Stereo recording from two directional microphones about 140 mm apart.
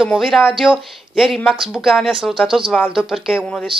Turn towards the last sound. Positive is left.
turn(degrees=-5)  # may be behind; listen again after turning